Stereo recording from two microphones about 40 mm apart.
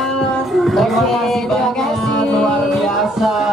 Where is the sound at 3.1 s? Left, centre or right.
Centre.